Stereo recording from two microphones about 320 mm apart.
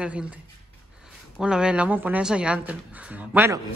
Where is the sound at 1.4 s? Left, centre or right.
Centre.